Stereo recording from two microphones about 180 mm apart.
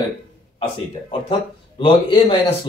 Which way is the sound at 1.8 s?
25° left (ahead or behind).